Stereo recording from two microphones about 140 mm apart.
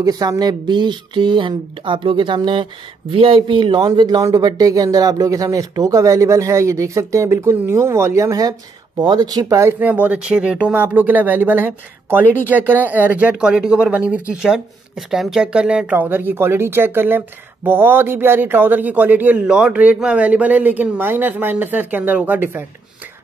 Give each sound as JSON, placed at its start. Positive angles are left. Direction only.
{"t": 0.0, "sound": "a man's voice", "side_deg": -25}